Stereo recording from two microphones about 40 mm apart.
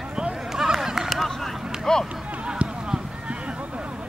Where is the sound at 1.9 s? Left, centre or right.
Centre.